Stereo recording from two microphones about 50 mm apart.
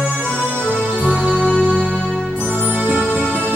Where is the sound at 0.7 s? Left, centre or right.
Left.